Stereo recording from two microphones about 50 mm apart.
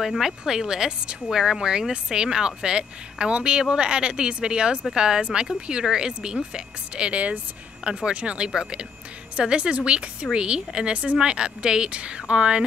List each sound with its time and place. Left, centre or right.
0.0 s a woman's voice: centre
1.3 s speech: centre
1.6 s a woman's voice: centre